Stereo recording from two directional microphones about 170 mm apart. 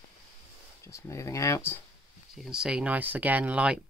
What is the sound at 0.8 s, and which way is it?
Speech, 15° left (ahead or behind).